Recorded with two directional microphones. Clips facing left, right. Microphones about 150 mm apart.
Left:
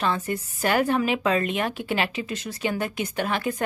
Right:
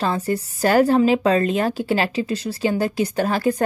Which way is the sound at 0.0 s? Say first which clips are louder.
Right 4 dB; 35° right (ahead or behind).